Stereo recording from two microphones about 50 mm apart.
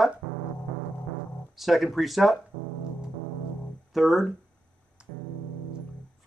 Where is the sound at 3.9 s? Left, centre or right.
Centre.